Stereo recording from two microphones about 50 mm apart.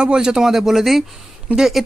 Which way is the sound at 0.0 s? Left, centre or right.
Centre.